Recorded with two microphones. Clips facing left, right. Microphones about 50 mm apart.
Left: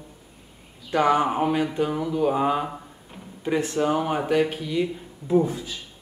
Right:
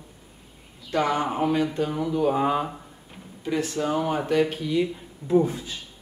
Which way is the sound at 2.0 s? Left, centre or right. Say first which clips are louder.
Right 1 dB; centre.